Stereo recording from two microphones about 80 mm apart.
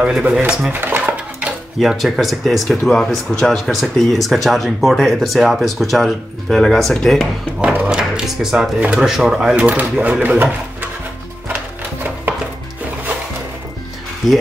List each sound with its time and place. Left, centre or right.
0.0 s speech: centre
0.7 s dishes: right
1.8 s speech: centre
7.6 s a sound: centre
8.7 s speech: centre
9.0 s speech: centre
9.6 s speech: centre
14.2 s speech: centre